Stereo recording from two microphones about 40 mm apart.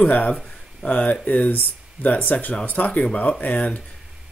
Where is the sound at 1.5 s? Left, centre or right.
Left.